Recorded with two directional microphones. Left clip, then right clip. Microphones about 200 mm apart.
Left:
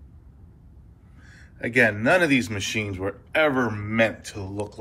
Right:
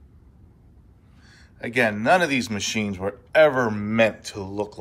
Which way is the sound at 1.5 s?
15° right (ahead or behind).